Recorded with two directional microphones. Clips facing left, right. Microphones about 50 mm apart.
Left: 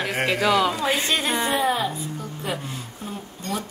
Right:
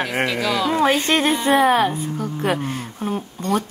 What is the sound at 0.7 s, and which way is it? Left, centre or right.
A woman's voice, right.